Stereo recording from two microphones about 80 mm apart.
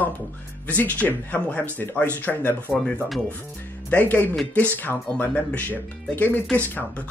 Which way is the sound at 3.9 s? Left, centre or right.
Left.